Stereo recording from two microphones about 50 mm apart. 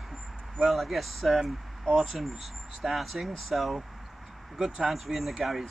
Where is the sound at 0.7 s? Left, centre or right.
Centre.